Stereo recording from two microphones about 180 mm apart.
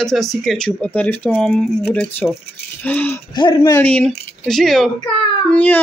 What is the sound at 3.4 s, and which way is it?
Speech, 25° left (ahead or behind).